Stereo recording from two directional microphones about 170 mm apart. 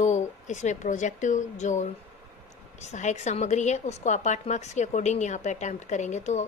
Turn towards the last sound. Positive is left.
turn(degrees=45)  # may be behind; listen again after turning